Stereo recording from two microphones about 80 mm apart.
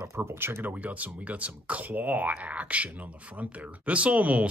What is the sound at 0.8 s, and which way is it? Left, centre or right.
Speech, centre.